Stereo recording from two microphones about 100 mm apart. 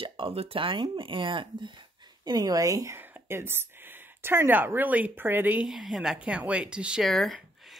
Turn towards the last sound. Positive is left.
turn(degrees=0)  # may be behind; listen again after turning